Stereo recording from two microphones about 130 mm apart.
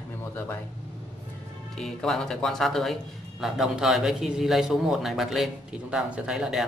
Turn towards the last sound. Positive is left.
turn(degrees=0)  # may be behind; listen again after turning